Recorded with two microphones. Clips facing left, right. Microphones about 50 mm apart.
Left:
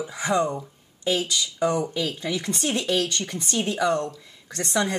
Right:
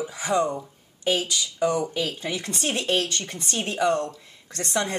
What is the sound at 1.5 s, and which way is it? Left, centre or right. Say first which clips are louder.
Speech: even; left.